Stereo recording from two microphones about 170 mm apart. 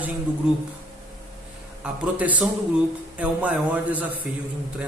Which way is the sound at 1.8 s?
10° right (ahead or behind).